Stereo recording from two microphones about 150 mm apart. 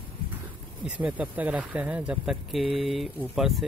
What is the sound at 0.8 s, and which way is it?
Speech, 10° right (ahead or behind).